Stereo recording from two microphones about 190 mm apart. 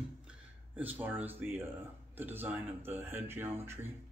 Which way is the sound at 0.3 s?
10° right (ahead or behind).